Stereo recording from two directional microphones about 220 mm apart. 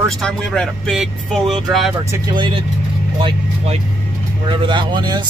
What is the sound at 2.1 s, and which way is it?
Speech, 20° right (ahead or behind).